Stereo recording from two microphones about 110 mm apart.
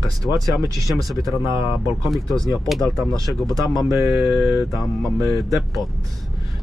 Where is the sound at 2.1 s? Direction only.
Centre (ahead or behind).